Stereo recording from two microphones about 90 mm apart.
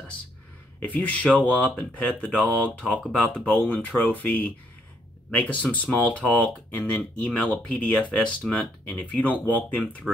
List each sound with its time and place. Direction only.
0.7 s speech: 20° left (ahead or behind)